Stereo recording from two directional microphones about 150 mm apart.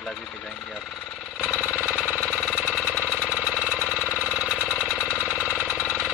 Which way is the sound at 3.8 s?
10° right (ahead or behind).